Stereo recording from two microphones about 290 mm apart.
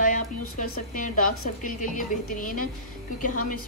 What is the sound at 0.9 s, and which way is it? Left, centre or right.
Speech, left.